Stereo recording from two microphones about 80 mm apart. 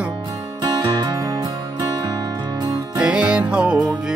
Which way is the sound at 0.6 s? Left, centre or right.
Right.